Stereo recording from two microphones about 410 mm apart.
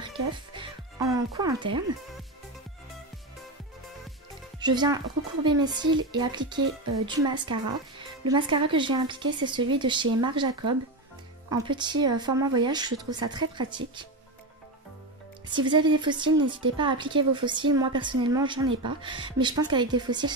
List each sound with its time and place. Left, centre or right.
0.6 s music: centre
4.6 s speech: centre
15.5 s speech: centre